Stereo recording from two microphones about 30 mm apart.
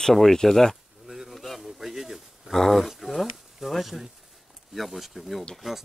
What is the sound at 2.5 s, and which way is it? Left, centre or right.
Speech, centre.